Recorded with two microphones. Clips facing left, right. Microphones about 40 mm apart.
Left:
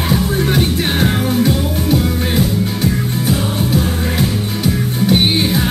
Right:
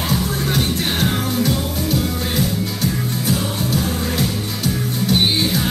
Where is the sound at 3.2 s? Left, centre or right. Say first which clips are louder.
Left 3 dB; left.